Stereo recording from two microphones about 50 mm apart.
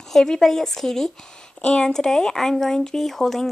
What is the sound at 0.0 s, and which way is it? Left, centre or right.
Speech, centre.